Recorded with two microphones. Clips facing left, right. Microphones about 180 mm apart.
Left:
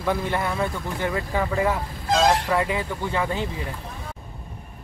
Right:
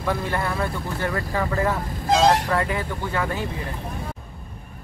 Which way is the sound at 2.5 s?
15° left (ahead or behind).